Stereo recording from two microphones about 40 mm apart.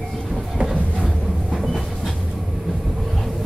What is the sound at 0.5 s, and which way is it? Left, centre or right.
Music, right.